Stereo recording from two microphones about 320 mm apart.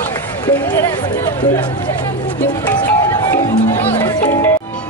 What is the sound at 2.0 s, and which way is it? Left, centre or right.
Music, centre.